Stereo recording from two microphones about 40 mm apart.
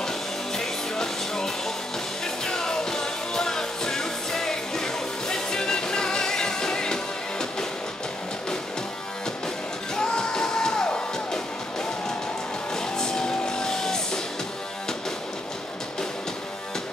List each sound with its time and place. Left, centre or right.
0.6 s music: centre
9.9 s music: centre